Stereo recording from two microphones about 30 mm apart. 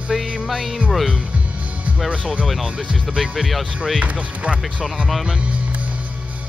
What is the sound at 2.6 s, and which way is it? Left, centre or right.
Speech, right.